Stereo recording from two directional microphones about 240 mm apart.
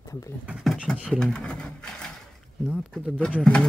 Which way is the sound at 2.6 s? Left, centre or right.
Centre.